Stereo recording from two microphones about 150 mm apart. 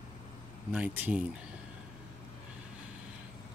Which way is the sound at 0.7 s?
10° right (ahead or behind).